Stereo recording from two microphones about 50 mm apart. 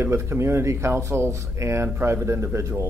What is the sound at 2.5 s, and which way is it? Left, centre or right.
Speech, right.